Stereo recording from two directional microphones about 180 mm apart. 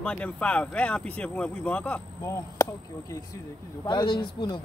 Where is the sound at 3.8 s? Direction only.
25° left (ahead or behind).